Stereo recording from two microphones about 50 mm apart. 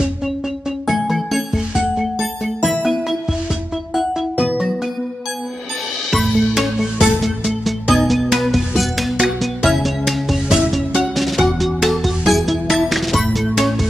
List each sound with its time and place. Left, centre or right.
0.8 s music: centre
4.4 s music: centre
6.0 s music: centre